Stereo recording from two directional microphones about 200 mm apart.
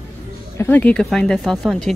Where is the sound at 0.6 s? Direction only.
5° left (ahead or behind).